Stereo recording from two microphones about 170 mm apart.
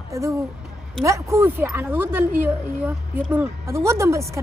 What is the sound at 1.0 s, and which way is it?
A woman's voice, 15° right (ahead or behind).